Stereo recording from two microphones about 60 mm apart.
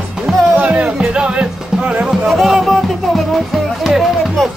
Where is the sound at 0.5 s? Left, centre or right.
Right.